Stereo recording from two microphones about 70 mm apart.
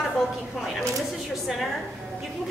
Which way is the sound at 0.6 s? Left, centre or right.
Centre.